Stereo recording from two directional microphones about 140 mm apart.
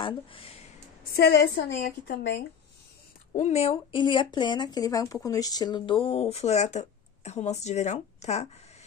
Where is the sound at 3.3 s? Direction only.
55° left (ahead or behind).